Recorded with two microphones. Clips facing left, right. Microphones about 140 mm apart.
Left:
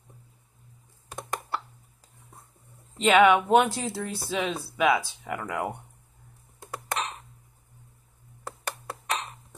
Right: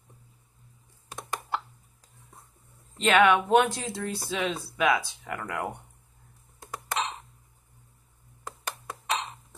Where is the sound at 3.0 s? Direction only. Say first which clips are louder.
Left 2 dB; 5° left (ahead or behind).